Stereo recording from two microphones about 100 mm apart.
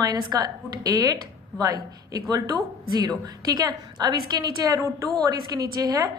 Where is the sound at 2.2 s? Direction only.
40° right (ahead or behind).